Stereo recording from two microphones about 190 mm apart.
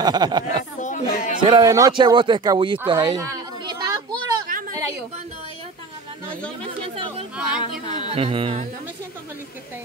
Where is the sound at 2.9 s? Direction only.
25° right (ahead or behind).